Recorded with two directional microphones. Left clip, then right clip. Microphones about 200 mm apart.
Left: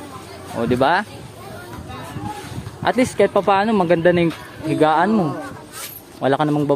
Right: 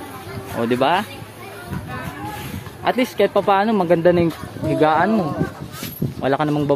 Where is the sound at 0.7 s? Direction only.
20° left (ahead or behind).